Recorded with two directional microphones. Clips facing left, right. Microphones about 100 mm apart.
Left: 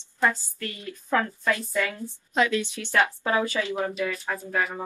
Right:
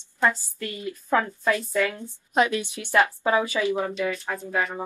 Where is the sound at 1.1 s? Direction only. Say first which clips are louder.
Right 2 dB; 20° right (ahead or behind).